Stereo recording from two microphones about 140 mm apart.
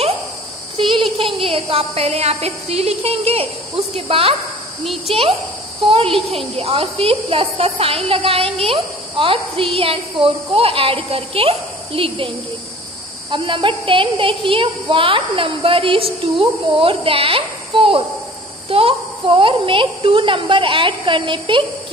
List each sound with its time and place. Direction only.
0.7 s a sound: 35° right (ahead or behind)
1.1 s a woman's voice: 40° right (ahead or behind)
4.8 s a child's voice: centre (ahead or behind)
5.9 s a woman's voice: 40° right (ahead or behind)
13.3 s a woman's voice: 35° right (ahead or behind)